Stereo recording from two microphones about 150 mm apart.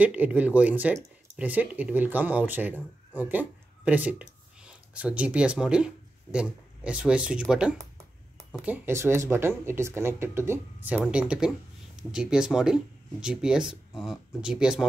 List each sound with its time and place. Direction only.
0.0 s speech: 10° right (ahead or behind)